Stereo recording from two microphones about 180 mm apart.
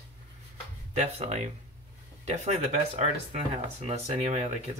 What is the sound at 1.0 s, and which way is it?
Speech, 35° right (ahead or behind).